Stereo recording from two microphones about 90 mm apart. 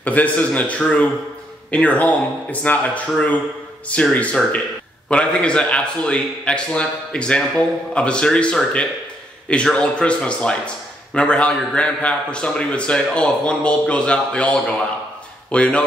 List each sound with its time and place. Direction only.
0.0 s a man's voice: 15° left (ahead or behind)